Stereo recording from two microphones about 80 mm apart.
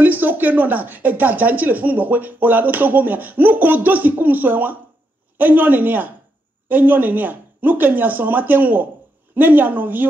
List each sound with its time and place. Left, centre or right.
0.0 s speech: right